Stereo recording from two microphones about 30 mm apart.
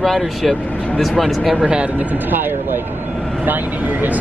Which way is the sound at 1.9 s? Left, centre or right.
Right.